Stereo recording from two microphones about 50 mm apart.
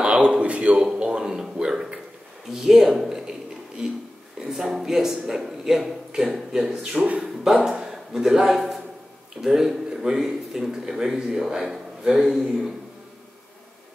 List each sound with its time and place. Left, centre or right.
0.0 s a man's voice: centre
12.3 s a man's voice: centre